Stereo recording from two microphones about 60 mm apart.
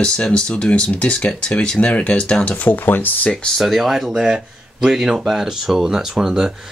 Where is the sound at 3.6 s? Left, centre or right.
Centre.